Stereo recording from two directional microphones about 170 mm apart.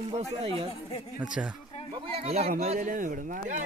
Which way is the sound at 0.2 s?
35° right (ahead or behind).